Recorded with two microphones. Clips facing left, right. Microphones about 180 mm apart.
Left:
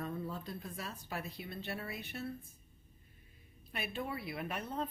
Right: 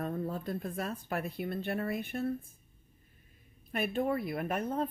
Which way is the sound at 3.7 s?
50° right (ahead or behind).